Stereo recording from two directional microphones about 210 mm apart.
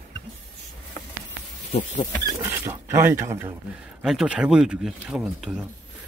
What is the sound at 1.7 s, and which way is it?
Speech, 30° left (ahead or behind).